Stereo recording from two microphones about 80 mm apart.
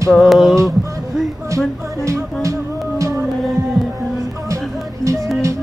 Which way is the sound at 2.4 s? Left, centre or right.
Right.